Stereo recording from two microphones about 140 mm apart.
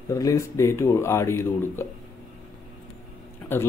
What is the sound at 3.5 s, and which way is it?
Speech, 15° left (ahead or behind).